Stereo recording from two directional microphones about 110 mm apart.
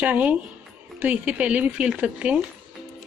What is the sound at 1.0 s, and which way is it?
Speech, 15° right (ahead or behind).